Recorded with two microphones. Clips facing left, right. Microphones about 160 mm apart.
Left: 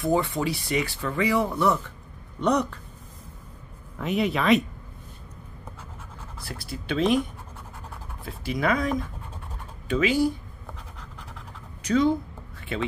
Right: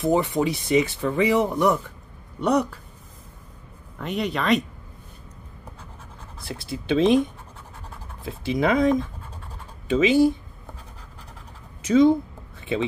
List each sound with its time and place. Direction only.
0.0 s speech: 20° right (ahead or behind)
4.0 s speech: centre (ahead or behind)
6.4 s speech: 20° right (ahead or behind)
8.2 s speech: 20° right (ahead or behind)
11.8 s a sound: 20° right (ahead or behind)